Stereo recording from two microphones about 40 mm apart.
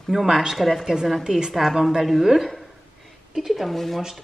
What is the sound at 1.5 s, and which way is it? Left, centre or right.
A woman's voice, centre.